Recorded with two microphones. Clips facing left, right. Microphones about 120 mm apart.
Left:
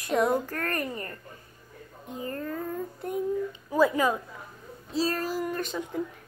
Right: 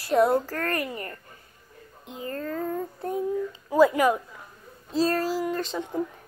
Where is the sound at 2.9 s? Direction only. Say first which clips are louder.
Right 2 dB; 35° right (ahead or behind).